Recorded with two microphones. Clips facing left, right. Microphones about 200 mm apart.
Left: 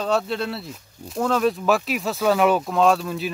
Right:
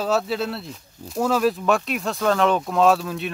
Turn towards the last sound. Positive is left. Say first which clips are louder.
# right 1 dB
turn(degrees=0)  # may be behind; listen again after turning